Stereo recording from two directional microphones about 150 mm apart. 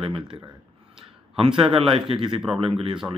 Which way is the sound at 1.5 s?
35° right (ahead or behind).